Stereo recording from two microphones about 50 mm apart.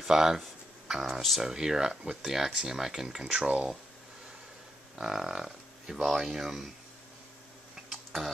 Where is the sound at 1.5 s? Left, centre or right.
Centre.